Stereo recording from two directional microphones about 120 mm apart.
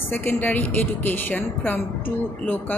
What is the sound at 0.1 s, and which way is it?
A woman's voice, 15° left (ahead or behind).